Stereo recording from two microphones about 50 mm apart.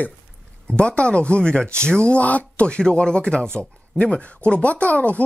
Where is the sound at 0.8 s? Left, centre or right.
Left.